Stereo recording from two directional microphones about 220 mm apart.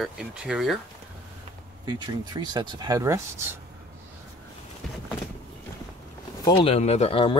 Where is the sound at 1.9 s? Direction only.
20° right (ahead or behind).